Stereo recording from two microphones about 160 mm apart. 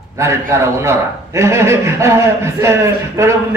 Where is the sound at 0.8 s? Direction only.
15° right (ahead or behind).